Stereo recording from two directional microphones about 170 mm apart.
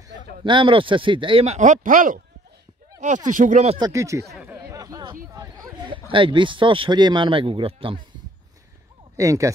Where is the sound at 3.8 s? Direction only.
15° right (ahead or behind).